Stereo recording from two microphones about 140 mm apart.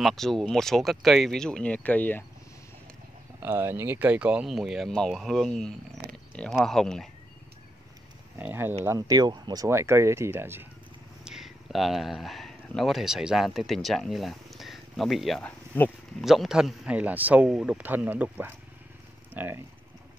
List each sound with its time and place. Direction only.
0.0 s speech: centre (ahead or behind)
3.4 s speech: 15° right (ahead or behind); by 7.1 s 5° left (ahead or behind)
8.4 s a man's voice: 15° right (ahead or behind)
8.8 s speech: 25° right (ahead or behind)
11.2 s speech: centre (ahead or behind)
15.4 s speech: 10° left (ahead or behind)
16.3 s a man's voice: 5° right (ahead or behind)